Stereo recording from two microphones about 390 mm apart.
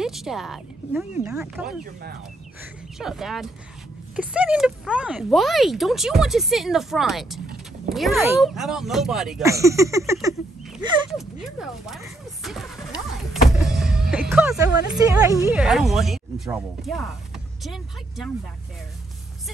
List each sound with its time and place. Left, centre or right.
0.0 s speech: centre
3.0 s speech: centre
13.3 s vehicle: centre
15.0 s a woman's voice: centre